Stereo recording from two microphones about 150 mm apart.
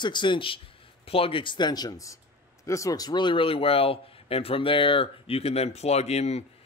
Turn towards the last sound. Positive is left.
turn(degrees=45)  # may be behind; listen again after turning